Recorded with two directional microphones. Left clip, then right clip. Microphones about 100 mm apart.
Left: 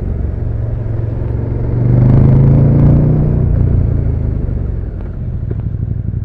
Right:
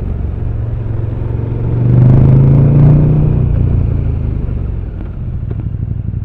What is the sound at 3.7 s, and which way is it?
Vehicle, 45° right (ahead or behind).